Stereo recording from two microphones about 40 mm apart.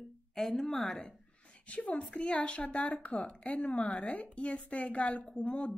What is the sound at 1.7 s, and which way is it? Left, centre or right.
A woman's voice, left.